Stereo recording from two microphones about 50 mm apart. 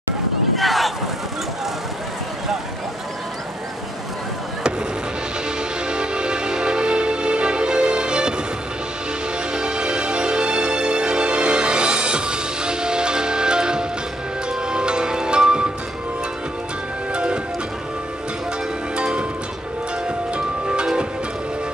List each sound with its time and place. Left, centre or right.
0.6 s boat: centre
5.9 s music: centre
9.5 s music: centre
17.1 s music: right
20.3 s music: centre